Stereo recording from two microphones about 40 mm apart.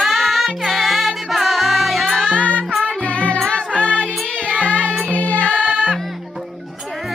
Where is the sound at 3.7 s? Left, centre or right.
Left.